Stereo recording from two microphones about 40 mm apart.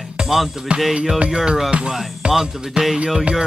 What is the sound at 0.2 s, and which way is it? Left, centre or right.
Music, right.